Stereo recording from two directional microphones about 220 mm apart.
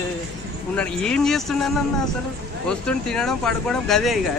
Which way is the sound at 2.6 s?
5° left (ahead or behind).